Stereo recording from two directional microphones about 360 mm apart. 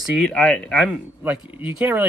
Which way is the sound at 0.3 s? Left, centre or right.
Centre.